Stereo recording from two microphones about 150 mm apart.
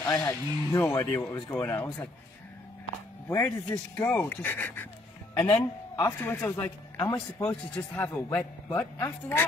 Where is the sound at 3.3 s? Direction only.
10° left (ahead or behind).